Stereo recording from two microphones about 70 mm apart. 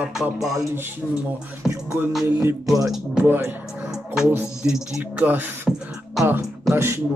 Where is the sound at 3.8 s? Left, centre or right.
Centre.